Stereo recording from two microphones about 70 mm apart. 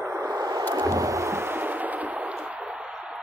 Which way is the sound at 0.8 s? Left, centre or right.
Right.